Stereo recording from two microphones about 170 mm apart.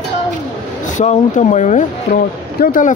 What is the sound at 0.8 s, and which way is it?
Speech, 45° left (ahead or behind).